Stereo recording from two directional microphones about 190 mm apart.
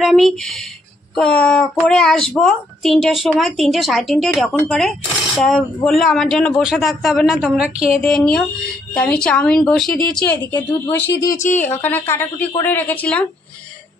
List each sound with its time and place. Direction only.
0.0 s a woman's voice: centre (ahead or behind)
9.9 s speech: 50° left (ahead or behind)
11.1 s a woman's voice: 20° left (ahead or behind)